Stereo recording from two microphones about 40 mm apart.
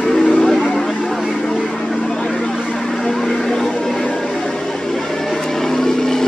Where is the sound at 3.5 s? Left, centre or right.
Centre.